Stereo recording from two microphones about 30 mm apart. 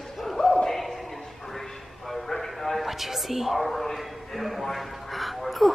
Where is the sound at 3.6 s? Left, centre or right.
Centre.